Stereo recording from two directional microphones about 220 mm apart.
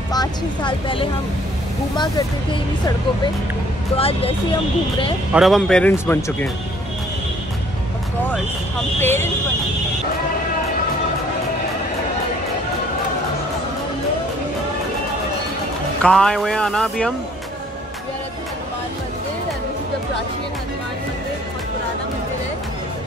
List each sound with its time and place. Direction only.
0.1 s speech: 20° left (ahead or behind)
3.9 s speech: 25° left (ahead or behind)
5.3 s speech: centre (ahead or behind)
9.0 s speech: 10° left (ahead or behind)
16.0 s speech: 5° left (ahead or behind)